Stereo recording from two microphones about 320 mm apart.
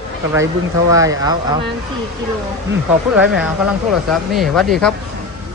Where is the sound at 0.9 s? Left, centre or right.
Centre.